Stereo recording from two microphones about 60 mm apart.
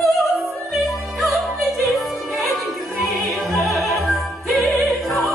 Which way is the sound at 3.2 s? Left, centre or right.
Centre.